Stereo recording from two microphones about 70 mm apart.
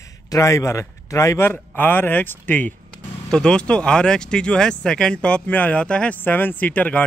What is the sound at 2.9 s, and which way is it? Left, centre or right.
Speech, centre.